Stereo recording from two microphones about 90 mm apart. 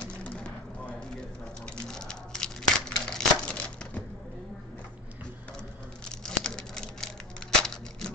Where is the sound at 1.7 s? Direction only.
10° left (ahead or behind).